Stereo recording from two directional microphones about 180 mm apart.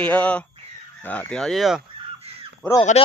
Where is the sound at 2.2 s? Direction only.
35° right (ahead or behind).